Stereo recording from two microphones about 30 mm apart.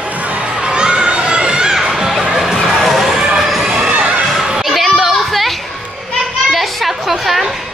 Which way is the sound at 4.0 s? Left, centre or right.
Right.